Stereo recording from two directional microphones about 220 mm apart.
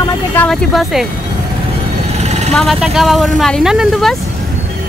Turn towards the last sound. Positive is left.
turn(degrees=0)  # may be behind; listen again after turning